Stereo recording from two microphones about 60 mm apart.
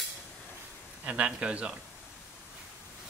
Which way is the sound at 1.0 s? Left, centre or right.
Right.